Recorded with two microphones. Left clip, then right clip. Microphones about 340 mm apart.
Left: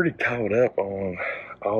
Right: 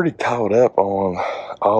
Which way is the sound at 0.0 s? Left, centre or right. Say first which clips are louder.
Right 5 dB; centre.